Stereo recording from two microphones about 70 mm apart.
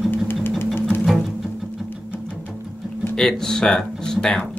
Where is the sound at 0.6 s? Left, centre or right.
Left.